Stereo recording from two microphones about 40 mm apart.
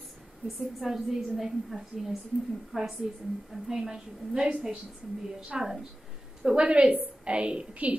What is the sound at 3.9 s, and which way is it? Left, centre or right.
Speech, right.